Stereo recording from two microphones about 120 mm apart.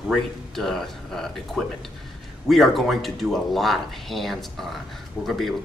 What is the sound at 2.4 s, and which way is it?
Speech, centre (ahead or behind).